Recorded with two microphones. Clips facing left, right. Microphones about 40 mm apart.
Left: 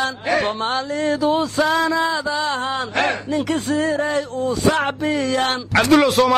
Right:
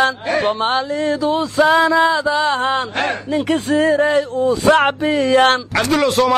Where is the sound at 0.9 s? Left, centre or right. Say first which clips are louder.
Right 1 dB; centre.